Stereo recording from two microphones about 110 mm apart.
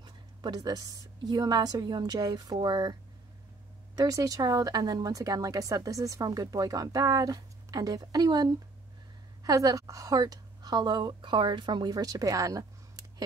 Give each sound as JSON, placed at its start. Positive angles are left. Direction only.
{"t": 0.0, "sound": "a woman's voice", "side_deg": -40}